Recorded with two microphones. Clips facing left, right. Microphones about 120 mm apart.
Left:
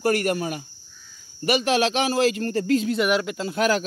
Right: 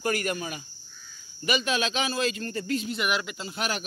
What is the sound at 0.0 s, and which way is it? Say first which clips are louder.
Speech: left 6 dB; 60° left (ahead or behind).